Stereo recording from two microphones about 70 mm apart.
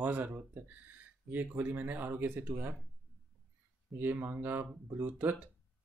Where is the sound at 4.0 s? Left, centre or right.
Right.